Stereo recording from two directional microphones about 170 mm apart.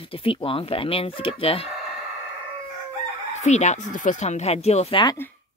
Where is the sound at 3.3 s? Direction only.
45° left (ahead or behind).